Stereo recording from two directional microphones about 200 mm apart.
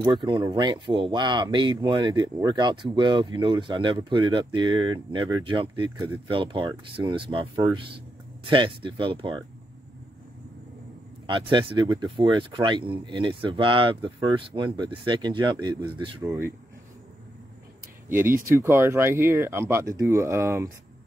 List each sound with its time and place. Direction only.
0.0 s speech: 25° right (ahead or behind)
11.2 s speech: 25° right (ahead or behind)
16.3 s speech: 10° right (ahead or behind)
18.0 s speech: 10° right (ahead or behind)